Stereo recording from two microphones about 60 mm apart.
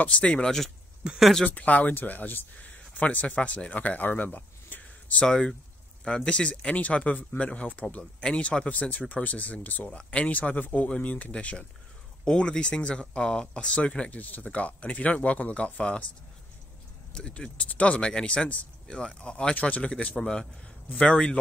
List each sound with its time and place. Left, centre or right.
0.0 s speech: centre
5.2 s speech: centre
17.1 s speech: centre